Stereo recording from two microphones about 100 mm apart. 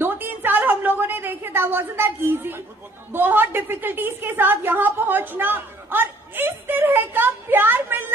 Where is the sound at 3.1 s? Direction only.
20° right (ahead or behind).